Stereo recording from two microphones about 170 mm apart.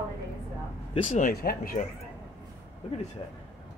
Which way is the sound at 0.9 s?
45° left (ahead or behind).